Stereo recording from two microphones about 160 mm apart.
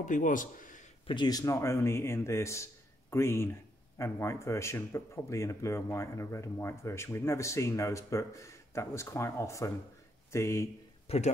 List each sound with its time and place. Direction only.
0.0 s speech: 55° left (ahead or behind)
1.0 s speech: 30° left (ahead or behind)
11.1 s speech: 45° left (ahead or behind)